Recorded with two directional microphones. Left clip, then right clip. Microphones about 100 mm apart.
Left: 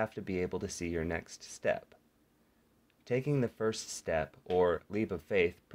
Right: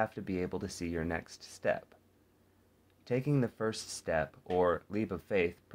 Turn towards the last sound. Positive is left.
turn(degrees=40)  # may be behind; listen again after turning